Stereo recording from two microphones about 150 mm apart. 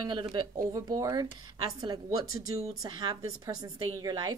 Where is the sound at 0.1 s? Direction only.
30° right (ahead or behind).